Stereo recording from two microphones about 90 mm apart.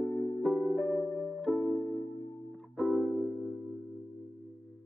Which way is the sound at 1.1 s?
Centre (ahead or behind).